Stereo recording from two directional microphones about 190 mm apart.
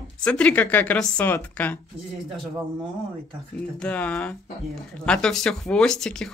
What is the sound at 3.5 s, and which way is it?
Speech, 5° left (ahead or behind).